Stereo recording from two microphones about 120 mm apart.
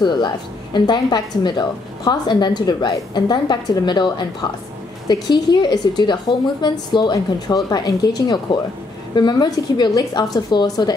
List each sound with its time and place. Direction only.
0.0 s a woman's voice: 40° left (ahead or behind)